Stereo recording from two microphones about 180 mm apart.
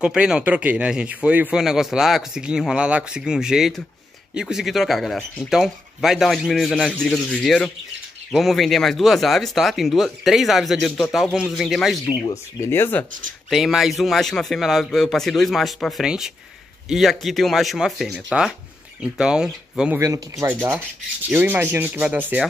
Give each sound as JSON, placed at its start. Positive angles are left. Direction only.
{"t": 0.0, "sound": "speech", "side_deg": -5}
{"t": 12.5, "sound": "speech", "side_deg": 15}
{"t": 13.5, "sound": "speech", "side_deg": 0}
{"t": 20.0, "sound": "speech", "side_deg": -15}